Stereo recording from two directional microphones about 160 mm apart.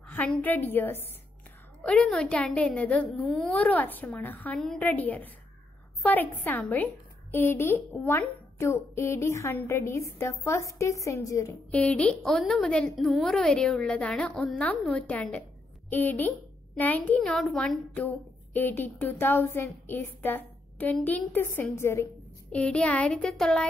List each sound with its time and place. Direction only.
0.1 s speech: 10° left (ahead or behind)
11.7 s a woman's voice: 10° left (ahead or behind)